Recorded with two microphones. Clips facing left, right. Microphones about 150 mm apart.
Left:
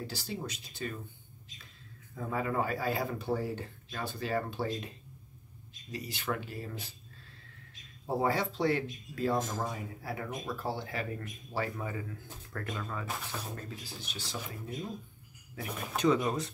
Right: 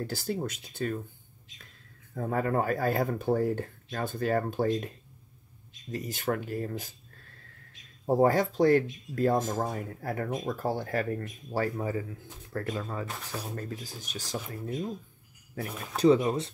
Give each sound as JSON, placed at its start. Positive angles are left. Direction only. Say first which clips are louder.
{"t": 0.0, "sound": "speech", "louder": "right 7 dB", "side_deg": -50}
{"t": 2.1, "sound": "speech", "louder": "right 4 dB", "side_deg": -50}
{"t": 5.9, "sound": "speech", "louder": "right 5 dB", "side_deg": -45}
{"t": 16.0, "sound": "speech", "louder": "right 6 dB", "side_deg": -30}